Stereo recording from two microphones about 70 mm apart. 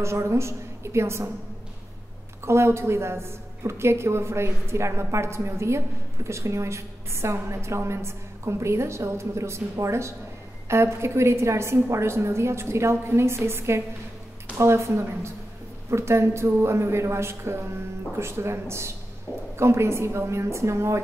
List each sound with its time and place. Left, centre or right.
0.0 s a woman's voice: right
2.4 s a woman's voice: right